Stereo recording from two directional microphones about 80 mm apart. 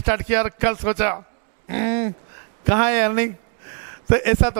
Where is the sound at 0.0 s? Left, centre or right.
Centre.